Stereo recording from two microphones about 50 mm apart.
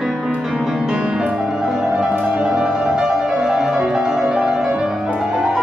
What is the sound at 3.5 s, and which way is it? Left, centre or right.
Music, centre.